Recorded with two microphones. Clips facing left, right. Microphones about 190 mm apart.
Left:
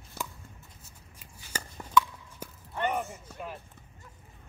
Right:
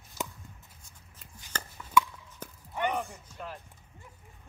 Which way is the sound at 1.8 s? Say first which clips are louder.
Left 4 dB; 45° left (ahead or behind).